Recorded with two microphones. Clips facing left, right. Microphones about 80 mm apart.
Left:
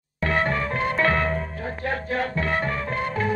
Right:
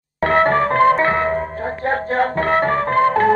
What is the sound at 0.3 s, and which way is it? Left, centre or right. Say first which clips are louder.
Music: right 9 dB; right.